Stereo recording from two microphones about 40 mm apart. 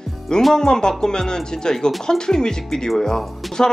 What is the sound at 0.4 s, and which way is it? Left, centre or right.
Speech, centre.